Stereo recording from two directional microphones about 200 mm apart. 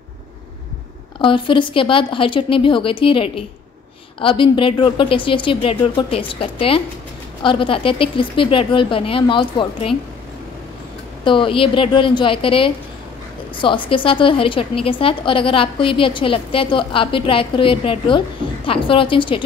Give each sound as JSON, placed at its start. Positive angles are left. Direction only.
{"t": 1.2, "sound": "a woman's voice", "side_deg": 25}
{"t": 11.2, "sound": "a woman's voice", "side_deg": 25}